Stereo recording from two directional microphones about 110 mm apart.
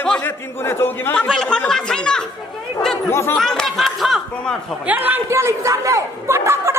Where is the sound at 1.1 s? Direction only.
10° left (ahead or behind).